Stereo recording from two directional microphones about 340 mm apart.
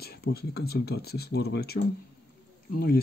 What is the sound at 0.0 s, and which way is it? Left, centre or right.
Speech, left.